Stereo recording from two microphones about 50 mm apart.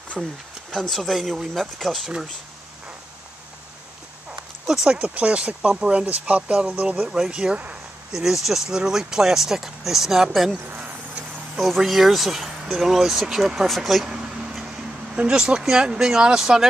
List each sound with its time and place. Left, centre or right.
0.2 s speech: centre
4.8 s speech: right
7.1 s speech: centre
8.1 s speech: centre
14.0 s a sound: centre
15.1 s speech: centre